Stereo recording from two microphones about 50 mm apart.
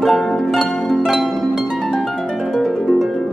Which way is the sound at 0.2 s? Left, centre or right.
Centre.